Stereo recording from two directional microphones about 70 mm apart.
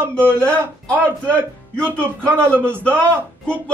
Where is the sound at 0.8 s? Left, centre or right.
Centre.